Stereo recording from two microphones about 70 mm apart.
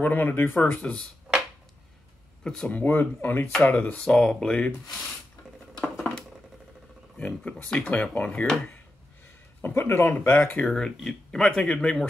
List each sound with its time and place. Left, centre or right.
0.0 s speech: left
0.8 s speech: centre
2.4 s speech: centre
2.7 s speech: left
3.7 s speech: centre
4.8 s speech: centre
5.8 s patter: centre
7.2 s speech: left
9.6 s speech: left
10.7 s speech: centre